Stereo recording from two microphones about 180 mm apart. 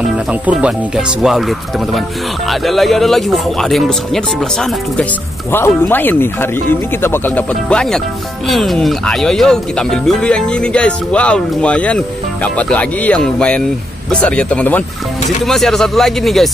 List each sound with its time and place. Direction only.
0.3 s speech: 5° right (ahead or behind)
2.6 s speech: centre (ahead or behind)